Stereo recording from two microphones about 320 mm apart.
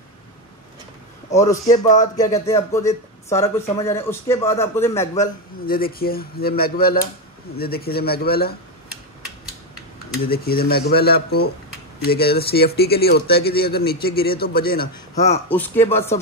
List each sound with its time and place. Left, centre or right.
1.3 s speech: centre
5.7 s speech: left
10.2 s speech: left
15.5 s speech: centre